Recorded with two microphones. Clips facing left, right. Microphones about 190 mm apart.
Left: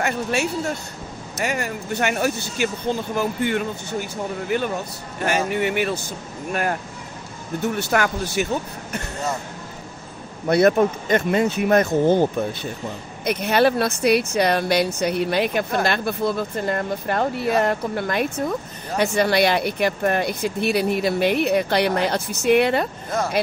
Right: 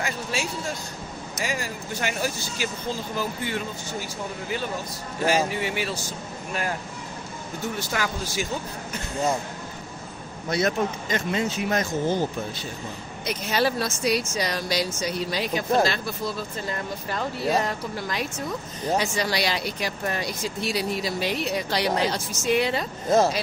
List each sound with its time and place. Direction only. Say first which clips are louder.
0.0 s speech: left 7 dB; 65° left (ahead or behind)
10.5 s speech: left 8 dB; 60° left (ahead or behind)